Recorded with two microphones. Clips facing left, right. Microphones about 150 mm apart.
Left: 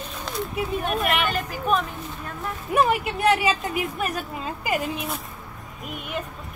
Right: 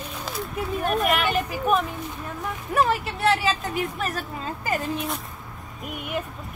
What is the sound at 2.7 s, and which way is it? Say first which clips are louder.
A woman's voice: left 2 dB; 10° left (ahead or behind).